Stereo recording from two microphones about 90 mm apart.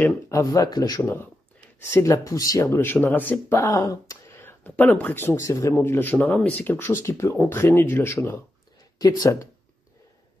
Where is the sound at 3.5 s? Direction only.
35° left (ahead or behind).